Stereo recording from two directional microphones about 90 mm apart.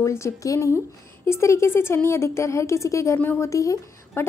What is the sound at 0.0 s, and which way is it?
A woman's voice, 35° left (ahead or behind).